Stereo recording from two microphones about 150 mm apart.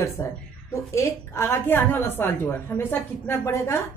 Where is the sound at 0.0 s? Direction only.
20° left (ahead or behind).